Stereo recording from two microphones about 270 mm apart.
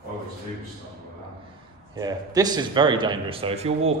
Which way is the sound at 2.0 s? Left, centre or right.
Centre.